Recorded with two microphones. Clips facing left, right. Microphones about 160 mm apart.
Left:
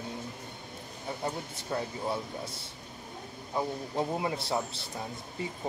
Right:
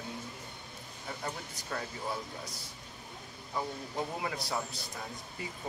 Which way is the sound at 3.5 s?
25° left (ahead or behind).